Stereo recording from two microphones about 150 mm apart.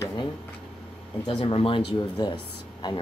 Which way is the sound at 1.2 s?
35° left (ahead or behind).